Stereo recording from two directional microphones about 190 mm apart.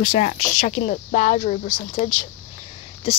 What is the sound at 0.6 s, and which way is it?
Speech, 40° left (ahead or behind).